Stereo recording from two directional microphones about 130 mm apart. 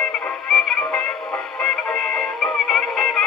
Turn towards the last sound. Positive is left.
turn(degrees=0)  # may be behind; listen again after turning